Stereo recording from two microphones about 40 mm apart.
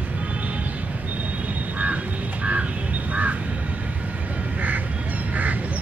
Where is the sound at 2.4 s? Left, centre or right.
Right.